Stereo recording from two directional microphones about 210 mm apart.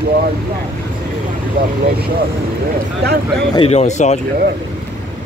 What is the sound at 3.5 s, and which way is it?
Speech, 30° left (ahead or behind).